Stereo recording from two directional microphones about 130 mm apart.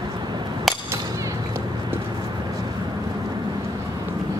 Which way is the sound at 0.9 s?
25° right (ahead or behind).